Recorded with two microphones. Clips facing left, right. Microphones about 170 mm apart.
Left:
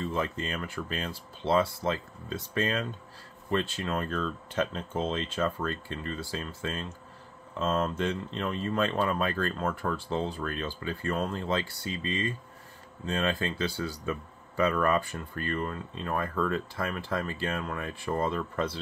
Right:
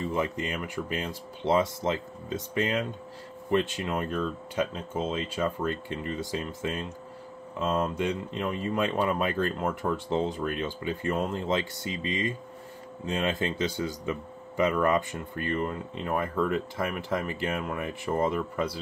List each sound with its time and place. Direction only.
0.0 s speech: 15° right (ahead or behind)